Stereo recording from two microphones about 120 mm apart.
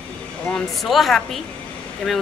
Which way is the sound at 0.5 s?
5° left (ahead or behind).